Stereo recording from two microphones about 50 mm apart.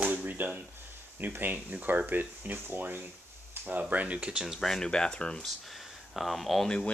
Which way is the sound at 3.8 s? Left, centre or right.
Right.